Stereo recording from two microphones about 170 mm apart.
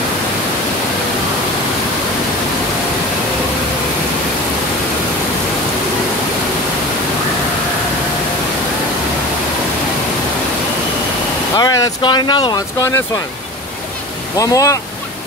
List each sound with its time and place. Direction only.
11.5 s speech: 20° left (ahead or behind)
14.3 s speech: 20° left (ahead or behind)